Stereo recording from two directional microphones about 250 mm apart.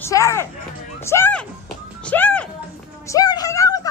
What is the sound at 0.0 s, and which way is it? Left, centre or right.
A woman's voice, centre.